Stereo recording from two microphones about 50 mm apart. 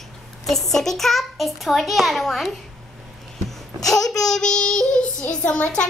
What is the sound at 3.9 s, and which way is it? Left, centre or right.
Child singing, centre.